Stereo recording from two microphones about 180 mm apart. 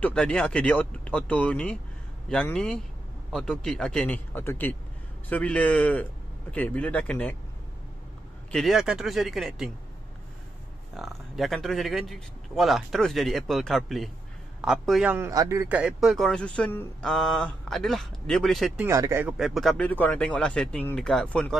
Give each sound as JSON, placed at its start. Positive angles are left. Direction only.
{"t": 0.0, "sound": "a man's voice", "side_deg": 5}
{"t": 8.5, "sound": "a man's voice", "side_deg": 0}
{"t": 11.0, "sound": "a man's voice", "side_deg": 0}
{"t": 18.8, "sound": "speech", "side_deg": -15}
{"t": 19.3, "sound": "a man's voice", "side_deg": 0}